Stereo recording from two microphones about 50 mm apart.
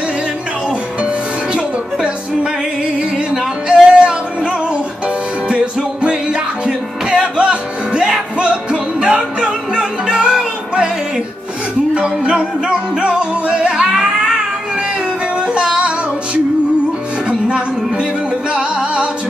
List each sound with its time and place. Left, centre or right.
0.7 s music: centre
5.8 s music: centre
11.9 s music: right
17.3 s music: right